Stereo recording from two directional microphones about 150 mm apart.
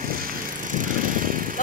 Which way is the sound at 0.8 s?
65° right (ahead or behind).